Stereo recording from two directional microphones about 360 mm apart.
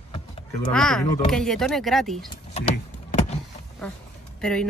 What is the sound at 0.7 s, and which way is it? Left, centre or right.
A woman's voice, centre.